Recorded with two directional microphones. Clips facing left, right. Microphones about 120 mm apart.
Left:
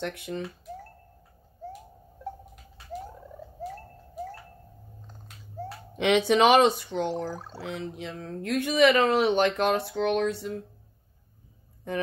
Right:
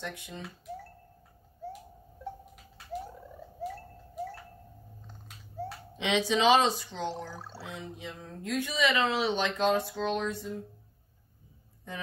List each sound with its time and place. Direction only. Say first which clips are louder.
0.0 s speech: left 8 dB; 65° left (ahead or behind)
5.9 s speech: left 7 dB; 60° left (ahead or behind)
7.6 s speech: left 7 dB; 75° left (ahead or behind)
11.9 s speech: left 10 dB; 60° left (ahead or behind)